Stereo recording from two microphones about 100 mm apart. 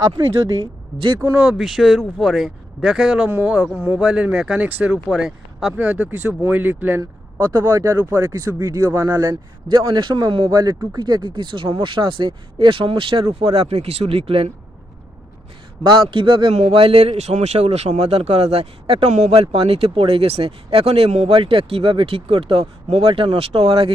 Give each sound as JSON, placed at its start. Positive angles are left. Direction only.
{"t": 1.4, "sound": "speech", "side_deg": -5}
{"t": 5.8, "sound": "speech", "side_deg": -15}
{"t": 7.0, "sound": "a man's voice", "side_deg": -35}
{"t": 10.5, "sound": "speech", "side_deg": -40}
{"t": 15.8, "sound": "speech", "side_deg": -55}
{"t": 16.5, "sound": "speech", "side_deg": -75}